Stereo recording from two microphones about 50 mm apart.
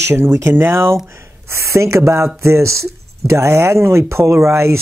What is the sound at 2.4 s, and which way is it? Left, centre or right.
Speech, right.